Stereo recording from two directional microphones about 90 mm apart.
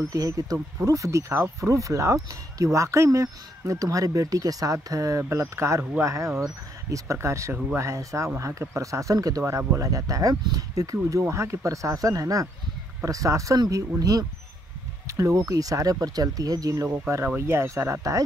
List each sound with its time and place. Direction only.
0.1 s speech: 40° right (ahead or behind)
9.4 s speech: 25° right (ahead or behind)